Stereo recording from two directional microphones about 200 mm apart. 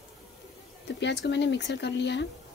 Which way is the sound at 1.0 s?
60° left (ahead or behind).